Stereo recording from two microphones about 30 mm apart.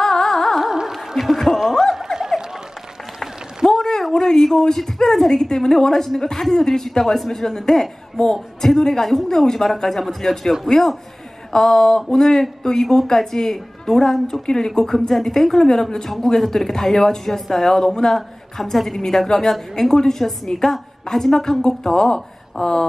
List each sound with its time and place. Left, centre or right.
0.0 s music: centre
0.9 s chuckle: centre
3.2 s a sound: centre
4.1 s a woman's voice: centre
14.4 s speech: left
14.9 s a woman's voice: centre